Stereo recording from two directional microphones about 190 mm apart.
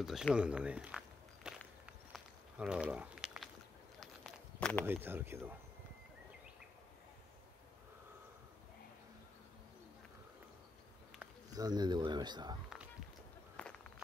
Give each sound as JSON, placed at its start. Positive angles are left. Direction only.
{"t": 0.0, "sound": "speech", "side_deg": 0}
{"t": 2.1, "sound": "walk", "side_deg": -5}
{"t": 4.0, "sound": "a sound", "side_deg": 5}
{"t": 4.8, "sound": "speech", "side_deg": -10}
{"t": 11.5, "sound": "speech", "side_deg": -20}
{"t": 13.6, "sound": "a sound", "side_deg": 5}